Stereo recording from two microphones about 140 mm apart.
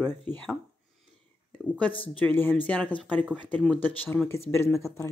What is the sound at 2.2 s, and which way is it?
Speech, 10° left (ahead or behind).